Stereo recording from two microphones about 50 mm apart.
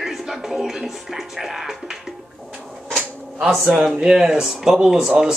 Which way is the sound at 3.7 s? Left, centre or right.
Centre.